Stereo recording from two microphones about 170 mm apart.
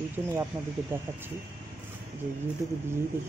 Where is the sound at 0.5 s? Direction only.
20° right (ahead or behind).